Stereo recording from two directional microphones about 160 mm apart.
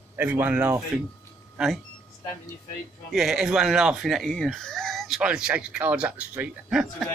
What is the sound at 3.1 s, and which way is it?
Speech, centre (ahead or behind).